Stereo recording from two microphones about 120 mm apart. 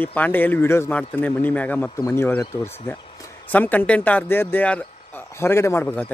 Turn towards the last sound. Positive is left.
turn(degrees=15)  # may be behind; listen again after turning